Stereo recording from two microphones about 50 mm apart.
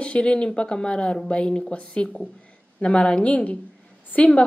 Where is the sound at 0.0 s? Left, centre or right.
Left.